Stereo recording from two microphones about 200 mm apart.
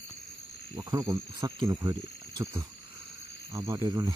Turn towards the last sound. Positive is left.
turn(degrees=-15)  # may be behind; listen again after turning